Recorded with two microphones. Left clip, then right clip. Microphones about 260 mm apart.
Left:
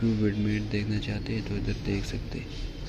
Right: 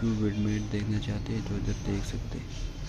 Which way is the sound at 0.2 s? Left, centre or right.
Centre.